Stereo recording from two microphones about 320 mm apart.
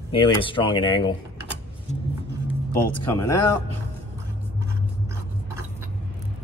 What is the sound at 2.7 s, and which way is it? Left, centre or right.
Speech, centre.